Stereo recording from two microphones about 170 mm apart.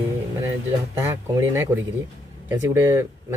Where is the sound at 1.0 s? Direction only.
15° right (ahead or behind).